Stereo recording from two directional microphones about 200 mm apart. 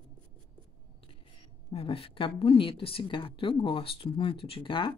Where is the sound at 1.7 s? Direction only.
25° left (ahead or behind).